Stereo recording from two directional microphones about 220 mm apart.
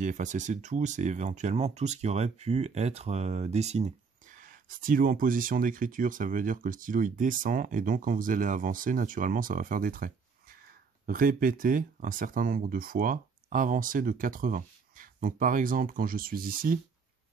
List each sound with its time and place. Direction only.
0.0 s speech: 35° right (ahead or behind)